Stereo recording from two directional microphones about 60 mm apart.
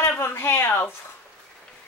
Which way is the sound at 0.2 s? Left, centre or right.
Left.